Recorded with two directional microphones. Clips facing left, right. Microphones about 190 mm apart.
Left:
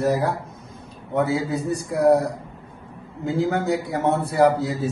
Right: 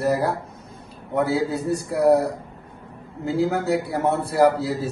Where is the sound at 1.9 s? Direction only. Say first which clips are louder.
Even; 10° right (ahead or behind).